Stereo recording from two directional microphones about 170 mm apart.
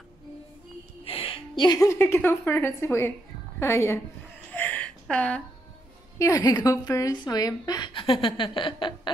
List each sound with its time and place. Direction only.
1.0 s music: 35° left (ahead or behind)
1.6 s a woman's voice: 20° left (ahead or behind)
4.6 s a sound: 10° left (ahead or behind)
6.1 s a woman's voice: 20° left (ahead or behind)